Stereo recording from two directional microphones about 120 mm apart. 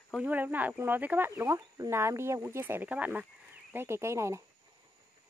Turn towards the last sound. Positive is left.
turn(degrees=-25)  # may be behind; listen again after turning